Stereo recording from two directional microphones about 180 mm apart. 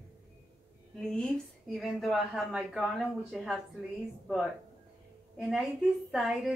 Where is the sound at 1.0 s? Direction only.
5° left (ahead or behind).